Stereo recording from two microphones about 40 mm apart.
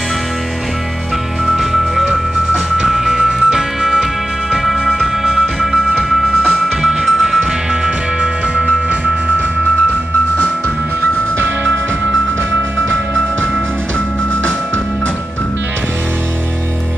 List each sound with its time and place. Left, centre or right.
1.5 s music: centre
7.8 s music: right